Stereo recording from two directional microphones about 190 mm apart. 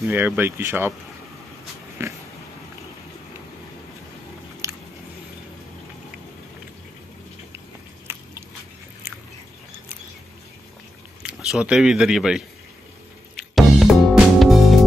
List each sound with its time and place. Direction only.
0.1 s speech: 10° right (ahead or behind)
2.0 s speech: 15° right (ahead or behind)
4.6 s biting: 15° right (ahead or behind)
8.1 s biting: 10° right (ahead or behind)
11.2 s speech: 5° right (ahead or behind)
13.4 s music: centre (ahead or behind)